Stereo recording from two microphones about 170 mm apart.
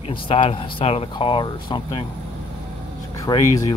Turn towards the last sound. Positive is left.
turn(degrees=20)  # may be behind; listen again after turning